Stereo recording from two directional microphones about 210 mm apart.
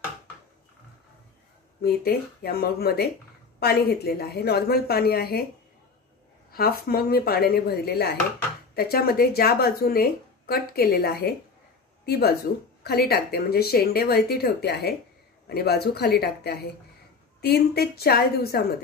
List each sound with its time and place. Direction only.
1.8 s a woman's voice: 45° left (ahead or behind)
6.5 s a woman's voice: 45° left (ahead or behind)